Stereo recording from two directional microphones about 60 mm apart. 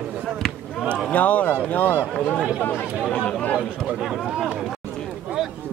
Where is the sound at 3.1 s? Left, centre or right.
Centre.